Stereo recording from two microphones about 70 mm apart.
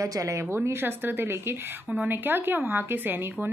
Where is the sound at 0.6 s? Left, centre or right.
Right.